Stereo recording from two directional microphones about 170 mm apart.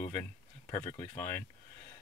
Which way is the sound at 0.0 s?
20° left (ahead or behind).